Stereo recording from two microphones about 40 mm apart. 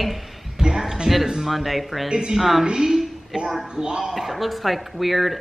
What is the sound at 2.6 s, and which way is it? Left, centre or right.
A woman's voice, centre.